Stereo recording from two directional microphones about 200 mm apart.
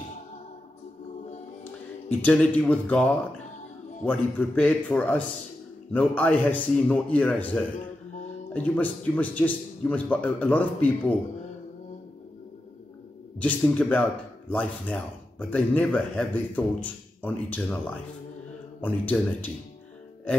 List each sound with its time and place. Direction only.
1.6 s speech: 10° left (ahead or behind)
13.4 s speech: 5° left (ahead or behind)